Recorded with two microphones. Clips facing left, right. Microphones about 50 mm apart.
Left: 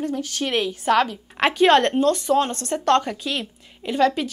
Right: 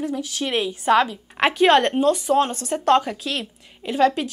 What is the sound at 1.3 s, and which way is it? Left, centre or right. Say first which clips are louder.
A woman's voice: even; centre.